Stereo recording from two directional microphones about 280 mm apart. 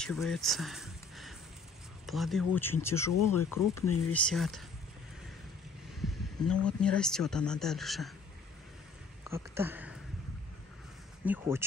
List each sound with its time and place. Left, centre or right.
0.0 s speech: centre
3.1 s speech: left
4.1 s speech: centre
5.9 s speech: centre
9.3 s speech: centre
11.2 s speech: centre